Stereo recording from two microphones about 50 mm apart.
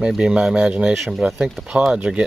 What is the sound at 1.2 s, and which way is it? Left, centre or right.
Speech, right.